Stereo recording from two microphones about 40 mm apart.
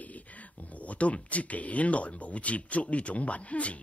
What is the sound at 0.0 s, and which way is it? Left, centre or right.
A woman's voice, left.